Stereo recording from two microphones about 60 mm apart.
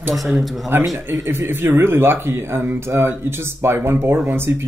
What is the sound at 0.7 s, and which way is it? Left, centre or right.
Speech, right.